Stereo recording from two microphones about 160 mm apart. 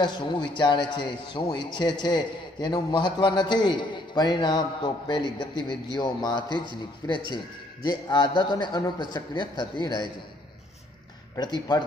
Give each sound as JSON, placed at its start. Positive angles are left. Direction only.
{"t": 0.0, "sound": "a man's voice", "side_deg": 30}
{"t": 11.3, "sound": "a man's voice", "side_deg": 25}